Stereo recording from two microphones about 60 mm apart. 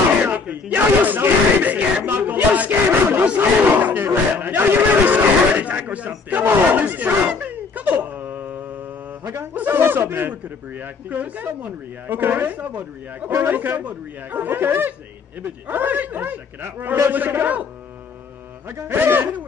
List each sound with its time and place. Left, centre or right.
0.3 s speech: right
6.7 s a sound: right
9.3 s a man's voice: right
11.1 s a man's voice: right
18.9 s a man's voice: right